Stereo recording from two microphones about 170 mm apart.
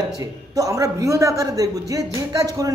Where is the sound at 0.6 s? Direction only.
20° right (ahead or behind).